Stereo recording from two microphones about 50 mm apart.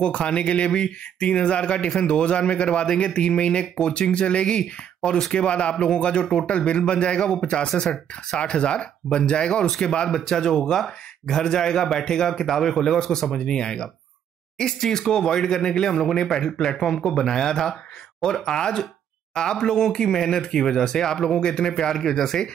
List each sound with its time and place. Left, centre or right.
0.0 s speech: left